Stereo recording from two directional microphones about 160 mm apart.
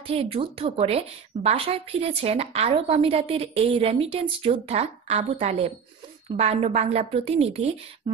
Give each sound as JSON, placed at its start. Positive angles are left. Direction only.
{"t": 0.1, "sound": "a woman's voice", "side_deg": -35}